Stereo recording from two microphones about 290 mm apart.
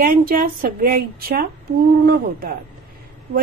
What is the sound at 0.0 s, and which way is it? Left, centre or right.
A woman's voice, right.